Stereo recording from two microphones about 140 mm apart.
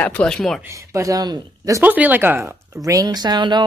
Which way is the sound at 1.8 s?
10° right (ahead or behind).